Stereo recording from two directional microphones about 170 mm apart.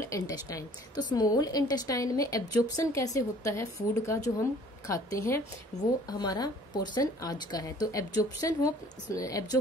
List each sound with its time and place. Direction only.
0.0 s a woman's voice: 20° left (ahead or behind)
5.7 s a woman's voice: 40° left (ahead or behind)
6.0 s a woman's voice: 25° left (ahead or behind)